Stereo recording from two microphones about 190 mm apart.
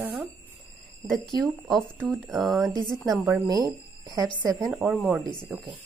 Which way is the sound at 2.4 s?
Centre (ahead or behind).